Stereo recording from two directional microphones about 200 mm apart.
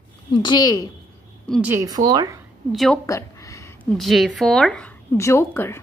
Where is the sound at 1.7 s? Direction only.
15° right (ahead or behind).